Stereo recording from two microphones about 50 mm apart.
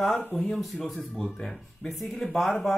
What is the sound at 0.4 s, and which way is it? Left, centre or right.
Speech, centre.